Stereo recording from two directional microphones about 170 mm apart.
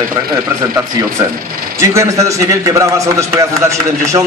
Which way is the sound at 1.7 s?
20° right (ahead or behind).